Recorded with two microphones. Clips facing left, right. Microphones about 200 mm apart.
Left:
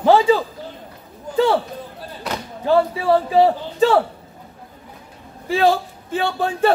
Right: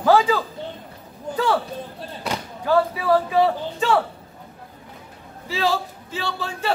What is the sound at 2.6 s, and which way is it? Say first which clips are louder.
A man's voice: left 3 dB; 25° left (ahead or behind).